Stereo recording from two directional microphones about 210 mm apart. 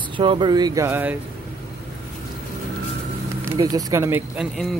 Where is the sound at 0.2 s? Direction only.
25° right (ahead or behind).